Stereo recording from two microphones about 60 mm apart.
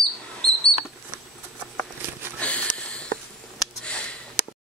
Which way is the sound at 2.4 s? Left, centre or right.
Left.